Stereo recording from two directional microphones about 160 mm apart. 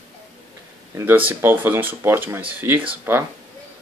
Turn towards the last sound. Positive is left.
turn(degrees=-15)  # may be behind; listen again after turning